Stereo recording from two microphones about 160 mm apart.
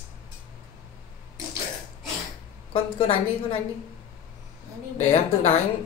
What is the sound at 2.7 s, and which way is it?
Speech, 35° left (ahead or behind).